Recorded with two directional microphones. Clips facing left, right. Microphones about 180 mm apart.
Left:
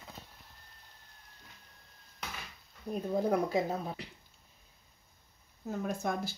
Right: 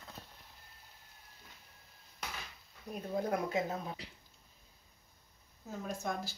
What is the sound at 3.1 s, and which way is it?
Speech, 35° left (ahead or behind).